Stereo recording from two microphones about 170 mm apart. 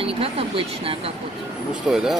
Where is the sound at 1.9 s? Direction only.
Centre (ahead or behind).